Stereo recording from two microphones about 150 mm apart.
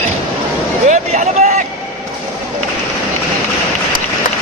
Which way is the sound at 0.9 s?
55° right (ahead or behind).